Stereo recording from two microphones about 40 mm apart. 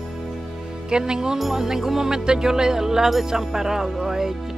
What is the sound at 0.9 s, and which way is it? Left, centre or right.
Speech, centre.